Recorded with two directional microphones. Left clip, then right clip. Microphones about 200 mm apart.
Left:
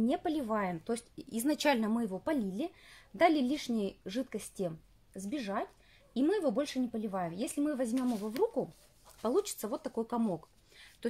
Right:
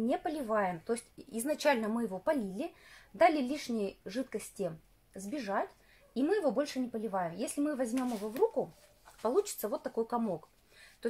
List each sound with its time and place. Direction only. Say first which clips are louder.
0.0 s speech: left 1 dB; 35° left (ahead or behind)
9.2 s speech: right 1 dB; 40° left (ahead or behind)